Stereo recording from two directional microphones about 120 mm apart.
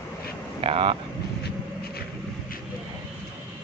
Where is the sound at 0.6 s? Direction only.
50° right (ahead or behind).